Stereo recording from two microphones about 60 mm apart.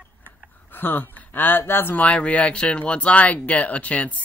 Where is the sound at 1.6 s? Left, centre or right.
Left.